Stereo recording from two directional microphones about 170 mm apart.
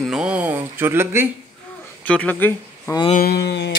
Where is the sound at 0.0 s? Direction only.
5° right (ahead or behind).